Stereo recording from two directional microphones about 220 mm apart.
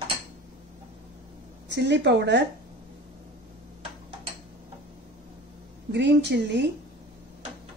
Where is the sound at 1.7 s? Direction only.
50° right (ahead or behind).